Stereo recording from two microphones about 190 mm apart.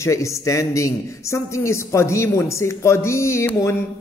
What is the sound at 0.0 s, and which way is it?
A man's voice, 15° left (ahead or behind).